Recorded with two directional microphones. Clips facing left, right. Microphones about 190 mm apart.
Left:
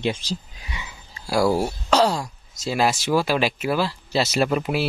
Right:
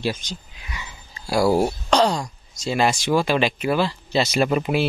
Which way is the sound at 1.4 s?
20° right (ahead or behind).